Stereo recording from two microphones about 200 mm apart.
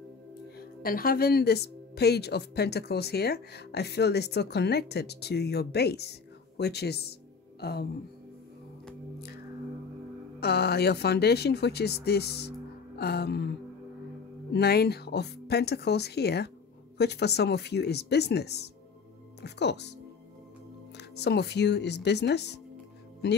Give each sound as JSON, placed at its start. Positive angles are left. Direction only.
{"t": 0.6, "sound": "a woman's voice", "side_deg": 45}
{"t": 10.4, "sound": "a woman's voice", "side_deg": 55}
{"t": 14.5, "sound": "a woman's voice", "side_deg": 55}
{"t": 21.2, "sound": "a woman's voice", "side_deg": 55}